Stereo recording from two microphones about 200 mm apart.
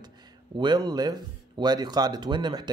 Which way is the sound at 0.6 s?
20° right (ahead or behind).